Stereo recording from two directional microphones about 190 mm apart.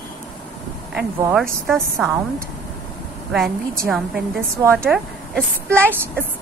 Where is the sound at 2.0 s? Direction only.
5° right (ahead or behind).